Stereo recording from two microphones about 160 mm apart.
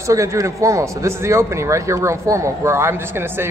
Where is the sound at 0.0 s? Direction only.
20° right (ahead or behind).